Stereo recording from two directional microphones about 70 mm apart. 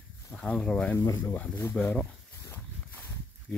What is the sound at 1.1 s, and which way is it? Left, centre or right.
Speech, left.